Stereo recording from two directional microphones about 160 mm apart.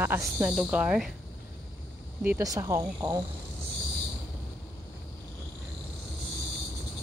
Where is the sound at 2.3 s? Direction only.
20° right (ahead or behind).